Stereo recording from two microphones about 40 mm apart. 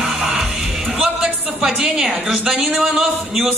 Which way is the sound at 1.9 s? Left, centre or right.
Centre.